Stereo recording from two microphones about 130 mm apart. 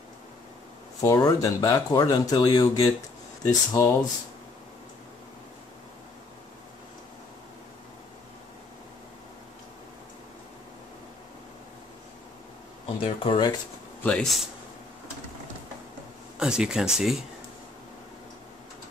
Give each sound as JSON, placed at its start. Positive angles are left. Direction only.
{"t": 1.0, "sound": "speech", "side_deg": 25}
{"t": 12.8, "sound": "speech", "side_deg": 45}
{"t": 14.0, "sound": "speech", "side_deg": 5}
{"t": 16.3, "sound": "speech", "side_deg": -5}